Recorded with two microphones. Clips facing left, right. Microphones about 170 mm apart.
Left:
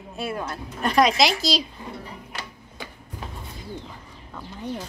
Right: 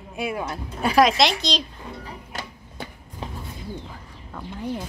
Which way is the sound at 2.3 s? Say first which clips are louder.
Right 3 dB; 45° right (ahead or behind).